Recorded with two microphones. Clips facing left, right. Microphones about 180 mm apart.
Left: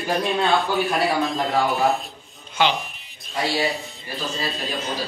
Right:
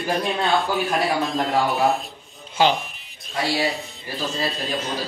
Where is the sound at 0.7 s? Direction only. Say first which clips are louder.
Left 1 dB; centre (ahead or behind).